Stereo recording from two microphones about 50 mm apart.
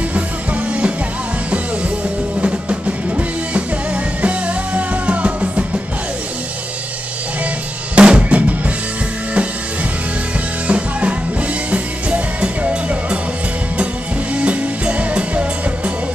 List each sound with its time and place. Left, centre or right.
2.4 s music: right
7.9 s drum kit: right
10.7 s music: right
14.3 s music: right